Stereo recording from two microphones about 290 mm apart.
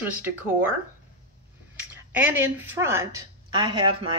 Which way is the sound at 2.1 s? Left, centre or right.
Centre.